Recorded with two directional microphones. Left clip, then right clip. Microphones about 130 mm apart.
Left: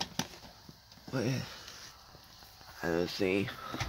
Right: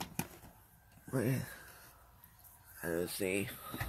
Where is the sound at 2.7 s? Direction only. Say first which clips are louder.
Left 5 dB; 40° left (ahead or behind).